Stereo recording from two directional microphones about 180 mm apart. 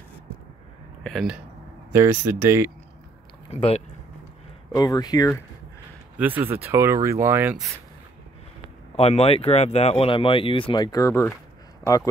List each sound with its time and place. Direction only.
1.0 s speech: centre (ahead or behind)
1.9 s speech: 15° right (ahead or behind)
4.7 s speech: 20° left (ahead or behind)
6.1 s speech: 10° right (ahead or behind)
8.9 s speech: 35° left (ahead or behind); by 12.0 s 15° left (ahead or behind)